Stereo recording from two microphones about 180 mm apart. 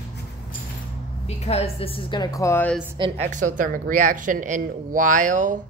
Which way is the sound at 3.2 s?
45° right (ahead or behind).